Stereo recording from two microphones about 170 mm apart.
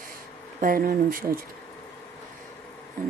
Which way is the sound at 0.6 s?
55° right (ahead or behind).